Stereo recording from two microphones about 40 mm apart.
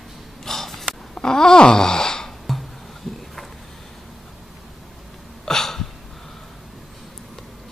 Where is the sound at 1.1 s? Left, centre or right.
Centre.